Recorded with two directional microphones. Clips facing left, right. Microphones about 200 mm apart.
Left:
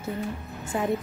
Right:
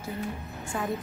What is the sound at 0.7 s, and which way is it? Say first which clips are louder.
Speech: left 5 dB; 20° left (ahead or behind).